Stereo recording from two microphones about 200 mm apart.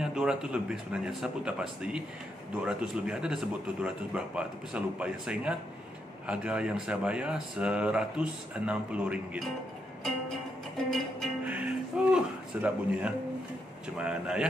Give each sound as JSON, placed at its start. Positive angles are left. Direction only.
{"t": 0.0, "sound": "speech", "side_deg": -5}
{"t": 10.9, "sound": "music", "side_deg": -5}
{"t": 13.9, "sound": "speech", "side_deg": -5}